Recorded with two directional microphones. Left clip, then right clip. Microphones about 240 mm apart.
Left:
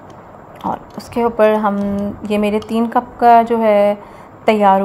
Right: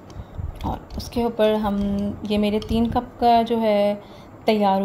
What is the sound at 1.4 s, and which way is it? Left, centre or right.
A woman's voice, centre.